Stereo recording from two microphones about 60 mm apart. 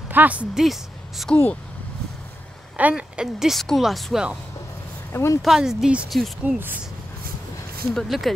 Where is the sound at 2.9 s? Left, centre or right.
Centre.